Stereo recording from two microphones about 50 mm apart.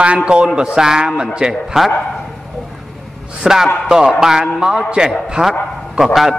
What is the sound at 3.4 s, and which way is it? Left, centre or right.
A man's voice, centre.